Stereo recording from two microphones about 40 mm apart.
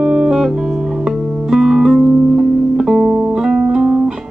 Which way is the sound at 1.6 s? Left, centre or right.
Centre.